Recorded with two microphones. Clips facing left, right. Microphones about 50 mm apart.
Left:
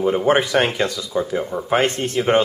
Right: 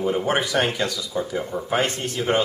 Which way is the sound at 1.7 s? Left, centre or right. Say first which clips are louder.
Left 5 dB; left.